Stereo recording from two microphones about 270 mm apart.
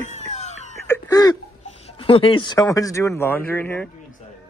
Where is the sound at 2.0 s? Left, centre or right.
Centre.